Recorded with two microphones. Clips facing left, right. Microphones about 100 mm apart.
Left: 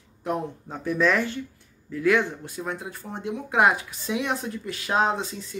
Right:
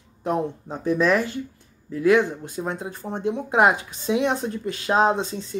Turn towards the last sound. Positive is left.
turn(degrees=-30)  # may be behind; listen again after turning